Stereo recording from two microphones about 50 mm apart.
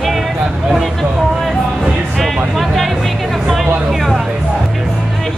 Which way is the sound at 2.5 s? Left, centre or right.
Centre.